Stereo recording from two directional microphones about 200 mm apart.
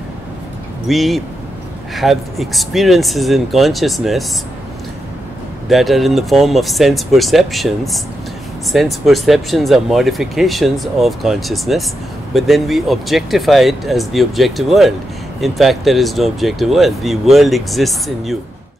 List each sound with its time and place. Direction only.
0.8 s speech: centre (ahead or behind)
5.7 s speech: centre (ahead or behind)